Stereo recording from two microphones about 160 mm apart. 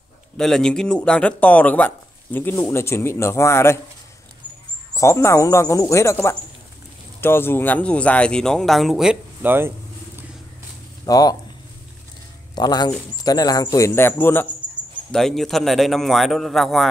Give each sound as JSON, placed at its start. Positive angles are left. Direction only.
{"t": 0.4, "sound": "speech", "side_deg": 5}
{"t": 4.9, "sound": "speech", "side_deg": 20}
{"t": 11.1, "sound": "speech", "side_deg": 25}
{"t": 12.5, "sound": "speech", "side_deg": 25}
{"t": 15.0, "sound": "speech", "side_deg": 5}